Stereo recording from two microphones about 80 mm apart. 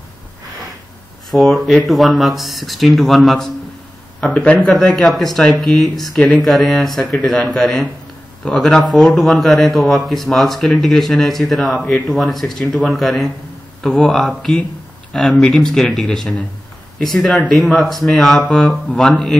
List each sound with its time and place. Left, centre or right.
1.3 s a man's voice: centre
4.2 s a man's voice: centre
6.1 s speech: centre
6.4 s a man's voice: centre